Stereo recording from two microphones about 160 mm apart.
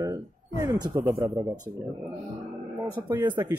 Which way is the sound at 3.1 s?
30° right (ahead or behind).